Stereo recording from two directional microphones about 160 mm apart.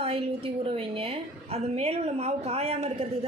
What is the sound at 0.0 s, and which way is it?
A woman's voice, 35° right (ahead or behind).